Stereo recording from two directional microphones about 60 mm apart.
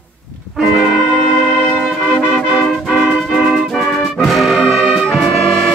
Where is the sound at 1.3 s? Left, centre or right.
Centre.